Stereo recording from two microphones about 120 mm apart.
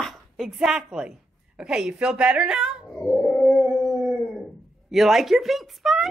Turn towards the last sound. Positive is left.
turn(degrees=0)  # may be behind; listen again after turning